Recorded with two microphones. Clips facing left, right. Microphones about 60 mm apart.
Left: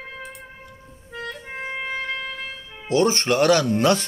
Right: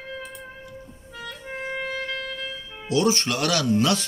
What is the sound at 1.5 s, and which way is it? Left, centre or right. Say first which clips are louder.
Clarinet: right 2 dB; left.